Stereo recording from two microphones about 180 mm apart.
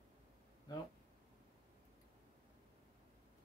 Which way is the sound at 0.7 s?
20° left (ahead or behind).